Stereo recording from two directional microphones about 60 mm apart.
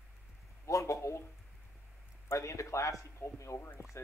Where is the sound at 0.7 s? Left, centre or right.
Left.